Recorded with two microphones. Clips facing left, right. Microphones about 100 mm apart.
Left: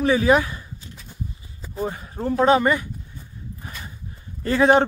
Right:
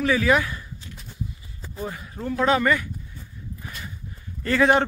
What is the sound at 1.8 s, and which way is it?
Speech, 30° left (ahead or behind).